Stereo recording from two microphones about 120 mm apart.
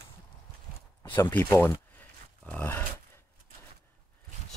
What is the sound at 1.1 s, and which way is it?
Speech, 20° left (ahead or behind).